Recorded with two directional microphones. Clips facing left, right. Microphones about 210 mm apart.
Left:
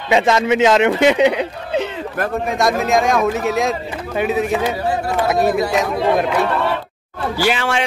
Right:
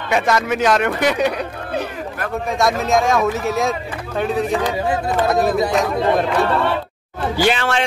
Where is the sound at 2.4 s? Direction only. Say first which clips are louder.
Even; centre (ahead or behind).